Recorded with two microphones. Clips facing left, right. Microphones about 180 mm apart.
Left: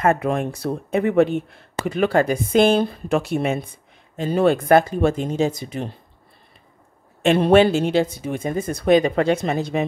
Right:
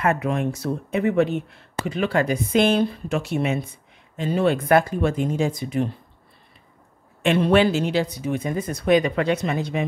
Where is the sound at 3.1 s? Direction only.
50° left (ahead or behind).